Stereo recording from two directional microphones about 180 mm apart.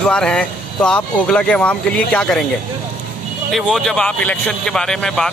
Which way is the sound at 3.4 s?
Centre (ahead or behind).